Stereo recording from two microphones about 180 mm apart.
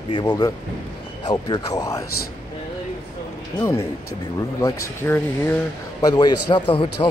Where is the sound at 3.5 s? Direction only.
15° left (ahead or behind).